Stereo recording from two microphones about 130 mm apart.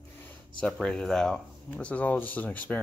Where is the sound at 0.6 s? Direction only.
5° left (ahead or behind).